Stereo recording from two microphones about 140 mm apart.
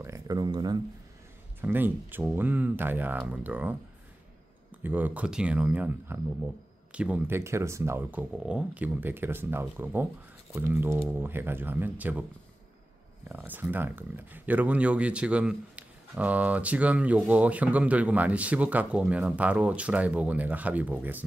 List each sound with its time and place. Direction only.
0.0 s a sound: 25° right (ahead or behind)
1.6 s speech: 15° right (ahead or behind)
4.8 s speech: 10° right (ahead or behind)
13.3 s speech: 15° right (ahead or behind)